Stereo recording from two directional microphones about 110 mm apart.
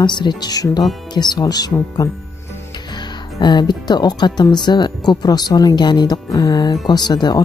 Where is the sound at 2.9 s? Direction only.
40° left (ahead or behind).